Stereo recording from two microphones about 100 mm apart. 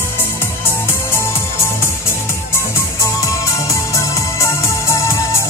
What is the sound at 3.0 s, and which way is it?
Music, 30° left (ahead or behind).